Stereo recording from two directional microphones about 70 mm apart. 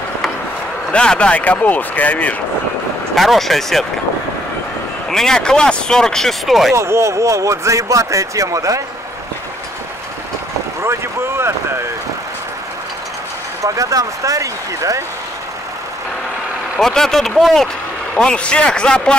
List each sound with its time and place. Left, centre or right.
0.9 s speech: centre
3.2 s speech: centre
5.1 s speech: centre
6.7 s speech: right
10.8 s vehicle: right
13.6 s speech: right
16.8 s speech: centre